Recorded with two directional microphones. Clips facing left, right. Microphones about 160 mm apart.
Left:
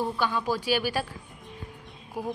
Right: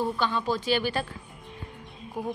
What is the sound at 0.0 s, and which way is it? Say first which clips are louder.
A woman's voice: even; 10° left (ahead or behind).